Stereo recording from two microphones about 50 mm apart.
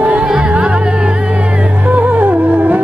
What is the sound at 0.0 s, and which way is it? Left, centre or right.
Music, centre.